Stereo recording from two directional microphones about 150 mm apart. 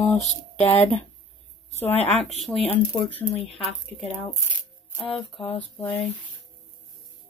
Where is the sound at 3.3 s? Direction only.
45° left (ahead or behind).